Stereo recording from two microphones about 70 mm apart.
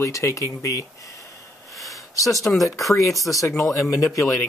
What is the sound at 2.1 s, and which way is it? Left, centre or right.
Speech, left.